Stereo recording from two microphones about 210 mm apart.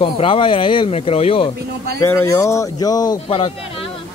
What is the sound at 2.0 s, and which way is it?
Speech, 15° left (ahead or behind).